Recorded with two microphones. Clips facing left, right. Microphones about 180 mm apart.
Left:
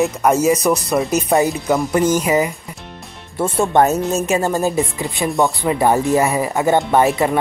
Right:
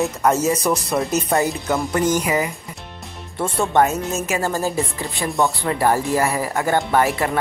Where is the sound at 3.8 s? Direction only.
35° left (ahead or behind).